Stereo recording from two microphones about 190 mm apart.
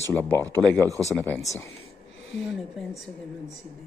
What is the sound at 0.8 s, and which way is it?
Speech, 15° right (ahead or behind).